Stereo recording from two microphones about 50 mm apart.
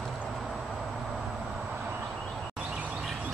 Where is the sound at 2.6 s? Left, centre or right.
Right.